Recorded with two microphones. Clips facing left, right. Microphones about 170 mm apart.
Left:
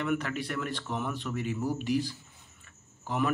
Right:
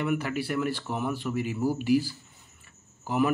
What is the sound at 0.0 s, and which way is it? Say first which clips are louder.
Speech: right 2 dB; 10° right (ahead or behind).